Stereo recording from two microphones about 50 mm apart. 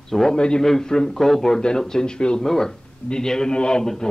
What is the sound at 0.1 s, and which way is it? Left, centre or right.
A man's voice, centre.